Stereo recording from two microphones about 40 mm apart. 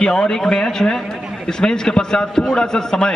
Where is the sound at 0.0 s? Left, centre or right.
Centre.